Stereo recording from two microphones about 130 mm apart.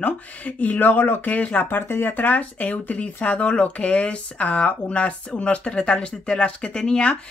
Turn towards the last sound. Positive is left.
turn(degrees=10)  # may be behind; listen again after turning